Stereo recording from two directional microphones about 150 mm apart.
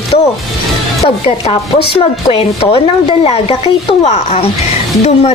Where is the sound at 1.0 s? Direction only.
40° left (ahead or behind).